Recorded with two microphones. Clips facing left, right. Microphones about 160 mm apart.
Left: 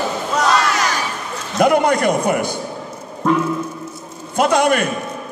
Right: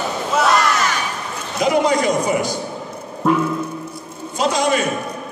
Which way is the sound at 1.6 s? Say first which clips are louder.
Left 2 dB; 55° left (ahead or behind).